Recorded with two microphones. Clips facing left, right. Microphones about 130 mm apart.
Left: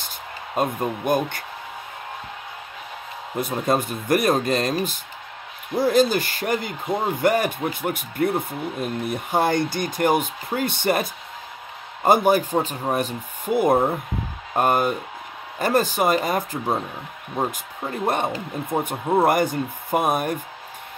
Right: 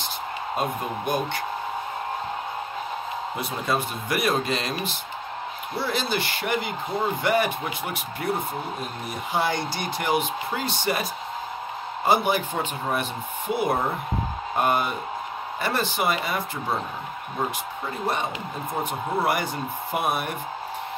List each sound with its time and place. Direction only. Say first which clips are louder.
0.6 s speech: left 6 dB; 50° left (ahead or behind)
3.3 s speech: left 6 dB; 50° left (ahead or behind)
18.0 s speech: left 4 dB; 55° left (ahead or behind)